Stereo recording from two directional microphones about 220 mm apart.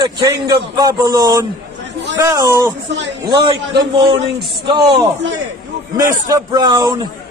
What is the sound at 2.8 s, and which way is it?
Speech, 55° right (ahead or behind).